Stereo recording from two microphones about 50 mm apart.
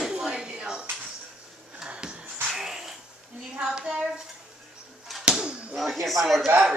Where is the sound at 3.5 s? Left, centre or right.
Centre.